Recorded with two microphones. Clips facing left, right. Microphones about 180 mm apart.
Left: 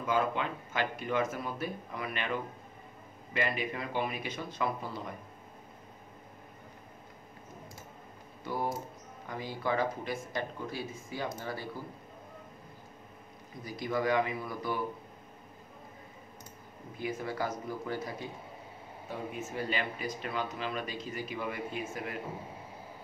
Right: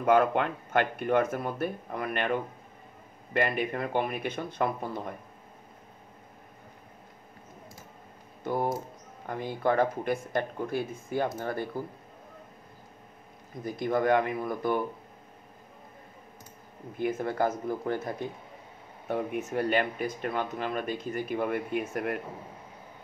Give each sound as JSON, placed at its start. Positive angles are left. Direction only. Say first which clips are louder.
{"t": 0.0, "sound": "speech", "louder": "right 7 dB", "side_deg": -60}
{"t": 9.2, "sound": "speech", "louder": "right 6 dB", "side_deg": -55}
{"t": 13.7, "sound": "speech", "louder": "right 5 dB", "side_deg": -50}
{"t": 17.0, "sound": "speech", "louder": "right 7 dB", "side_deg": -55}